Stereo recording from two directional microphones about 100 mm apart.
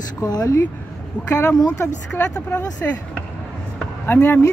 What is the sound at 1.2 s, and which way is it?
Speech, 15° left (ahead or behind).